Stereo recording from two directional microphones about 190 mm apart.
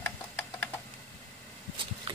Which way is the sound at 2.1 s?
30° right (ahead or behind).